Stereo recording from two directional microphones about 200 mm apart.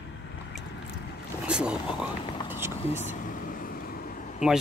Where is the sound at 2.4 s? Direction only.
10° right (ahead or behind).